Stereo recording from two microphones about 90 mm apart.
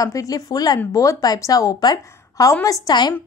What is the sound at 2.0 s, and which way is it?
Speech, 30° left (ahead or behind).